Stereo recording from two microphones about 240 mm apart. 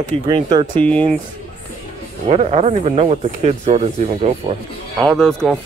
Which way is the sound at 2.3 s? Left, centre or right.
Right.